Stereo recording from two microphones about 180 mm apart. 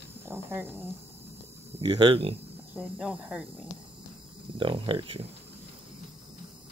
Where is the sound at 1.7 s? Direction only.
25° right (ahead or behind).